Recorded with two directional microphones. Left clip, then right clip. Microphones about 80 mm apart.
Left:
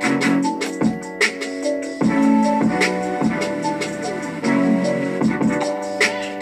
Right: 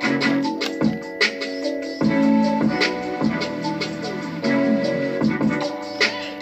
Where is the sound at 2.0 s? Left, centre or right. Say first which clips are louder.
Left 1 dB; right.